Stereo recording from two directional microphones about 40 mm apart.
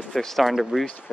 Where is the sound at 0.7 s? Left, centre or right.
Centre.